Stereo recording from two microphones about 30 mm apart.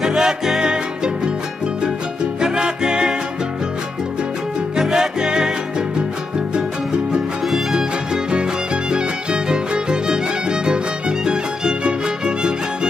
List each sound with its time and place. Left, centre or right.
0.0 s music: right
2.4 s music: right
4.7 s music: centre
8.9 s music: right